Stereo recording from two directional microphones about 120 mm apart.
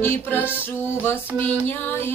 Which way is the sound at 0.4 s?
15° right (ahead or behind).